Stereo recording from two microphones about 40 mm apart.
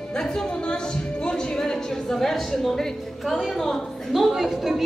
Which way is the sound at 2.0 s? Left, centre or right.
Centre.